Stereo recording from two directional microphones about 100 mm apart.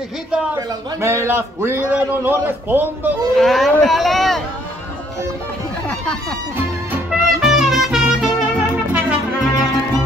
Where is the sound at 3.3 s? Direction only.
Centre (ahead or behind).